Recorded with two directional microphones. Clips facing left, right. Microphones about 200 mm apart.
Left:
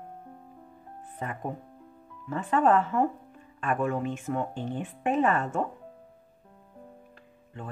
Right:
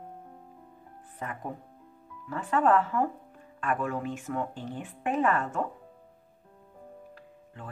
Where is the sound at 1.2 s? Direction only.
25° left (ahead or behind).